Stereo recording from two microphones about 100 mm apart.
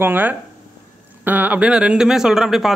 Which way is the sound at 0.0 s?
20° right (ahead or behind).